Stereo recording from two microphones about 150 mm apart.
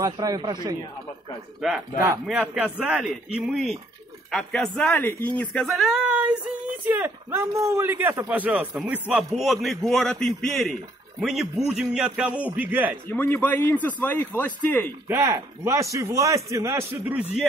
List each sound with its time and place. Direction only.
0.0 s a man's voice: 25° right (ahead or behind)
1.6 s speech: 5° right (ahead or behind)
13.1 s a man's voice: 10° left (ahead or behind)
15.0 s a man's voice: 20° right (ahead or behind)